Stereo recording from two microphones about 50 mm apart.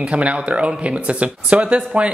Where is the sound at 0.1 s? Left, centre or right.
Right.